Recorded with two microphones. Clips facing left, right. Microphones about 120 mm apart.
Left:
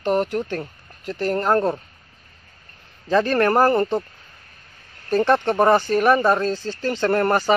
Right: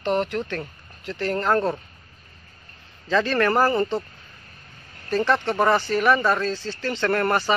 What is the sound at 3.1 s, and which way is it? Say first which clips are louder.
Speech: left 3 dB; 45° left (ahead or behind).